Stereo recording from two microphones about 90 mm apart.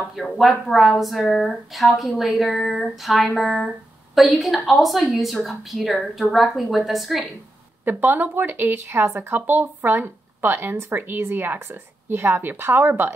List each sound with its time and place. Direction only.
0.1 s speech: centre (ahead or behind)
7.8 s speech: 20° right (ahead or behind)